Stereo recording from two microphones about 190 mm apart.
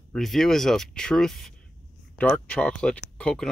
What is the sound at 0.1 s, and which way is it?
Speech, centre (ahead or behind).